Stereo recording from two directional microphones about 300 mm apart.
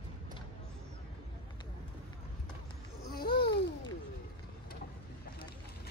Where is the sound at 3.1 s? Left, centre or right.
Left.